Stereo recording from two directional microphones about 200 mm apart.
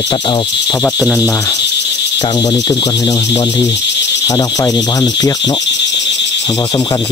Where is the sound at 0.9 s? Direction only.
5° right (ahead or behind).